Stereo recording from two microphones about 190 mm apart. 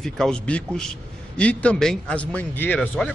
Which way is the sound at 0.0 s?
5° left (ahead or behind).